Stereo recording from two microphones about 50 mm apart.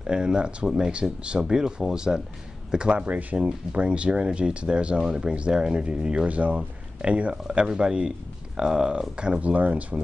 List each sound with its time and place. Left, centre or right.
0.0 s speech: centre
7.4 s speech: centre